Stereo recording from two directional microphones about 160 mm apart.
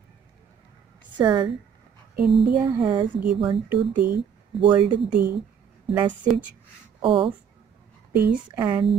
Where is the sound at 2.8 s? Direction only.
30° right (ahead or behind).